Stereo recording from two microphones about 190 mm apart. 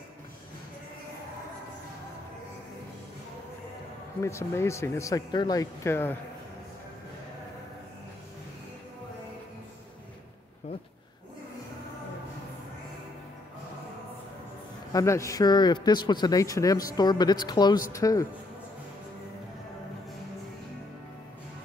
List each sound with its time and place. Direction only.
4.2 s speech: 15° left (ahead or behind)
14.9 s a man's voice: 15° left (ahead or behind)